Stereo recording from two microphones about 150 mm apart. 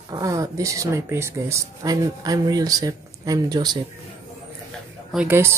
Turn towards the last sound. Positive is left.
turn(degrees=-15)  # may be behind; listen again after turning